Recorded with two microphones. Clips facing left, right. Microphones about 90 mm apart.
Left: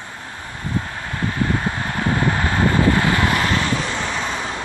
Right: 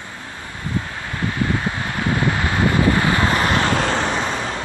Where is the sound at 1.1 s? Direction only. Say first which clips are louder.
Even; centre (ahead or behind); by 3.7 s 25° right (ahead or behind).